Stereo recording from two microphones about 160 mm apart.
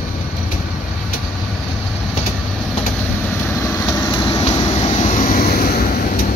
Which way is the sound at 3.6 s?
20° left (ahead or behind).